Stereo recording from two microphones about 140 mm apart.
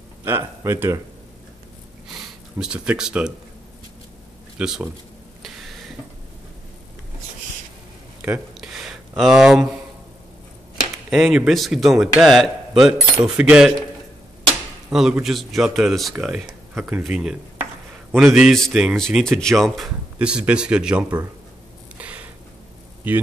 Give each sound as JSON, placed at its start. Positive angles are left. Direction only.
{"t": 0.2, "sound": "speech", "side_deg": -15}
{"t": 2.6, "sound": "speech", "side_deg": -5}
{"t": 4.6, "sound": "speech", "side_deg": -5}
{"t": 5.4, "sound": "a sound", "side_deg": 0}
{"t": 8.5, "sound": "a sound", "side_deg": -5}
{"t": 11.1, "sound": "speech", "side_deg": 0}
{"t": 14.9, "sound": "a man's voice", "side_deg": -5}
{"t": 21.9, "sound": "a sound", "side_deg": -10}
{"t": 23.0, "sound": "speech", "side_deg": -10}